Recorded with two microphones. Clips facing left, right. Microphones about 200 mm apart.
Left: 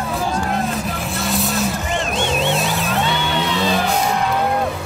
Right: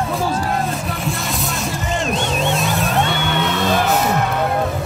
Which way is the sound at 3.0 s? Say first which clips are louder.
Right 1 dB; 55° right (ahead or behind).